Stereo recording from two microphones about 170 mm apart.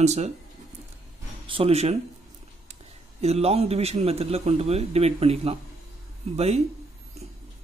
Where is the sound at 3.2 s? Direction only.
40° right (ahead or behind).